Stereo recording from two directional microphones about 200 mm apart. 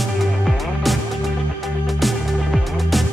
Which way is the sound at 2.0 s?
Centre (ahead or behind).